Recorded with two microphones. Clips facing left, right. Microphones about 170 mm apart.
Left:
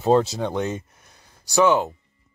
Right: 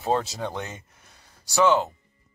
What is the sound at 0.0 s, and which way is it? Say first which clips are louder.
Speech: left 7 dB; 25° left (ahead or behind).